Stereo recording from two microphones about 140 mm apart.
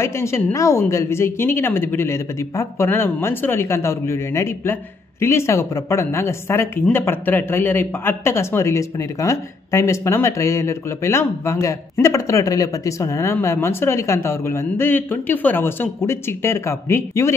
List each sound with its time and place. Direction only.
0.0 s speech: 20° left (ahead or behind)